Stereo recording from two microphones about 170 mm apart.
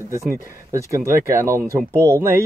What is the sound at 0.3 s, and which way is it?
Speech, 15° right (ahead or behind).